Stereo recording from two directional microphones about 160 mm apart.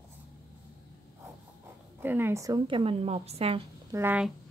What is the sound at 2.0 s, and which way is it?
Speech, 15° right (ahead or behind).